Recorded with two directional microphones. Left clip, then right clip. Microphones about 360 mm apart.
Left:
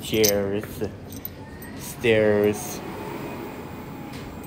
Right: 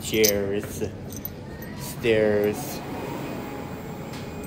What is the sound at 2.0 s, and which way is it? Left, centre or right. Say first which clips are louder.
Speech: left 2 dB; left.